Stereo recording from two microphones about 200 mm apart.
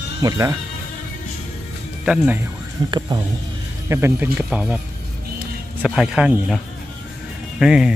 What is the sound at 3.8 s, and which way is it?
Speech, 10° right (ahead or behind).